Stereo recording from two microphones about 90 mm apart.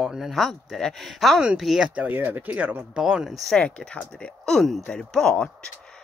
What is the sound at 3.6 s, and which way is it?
Speech, 10° left (ahead or behind).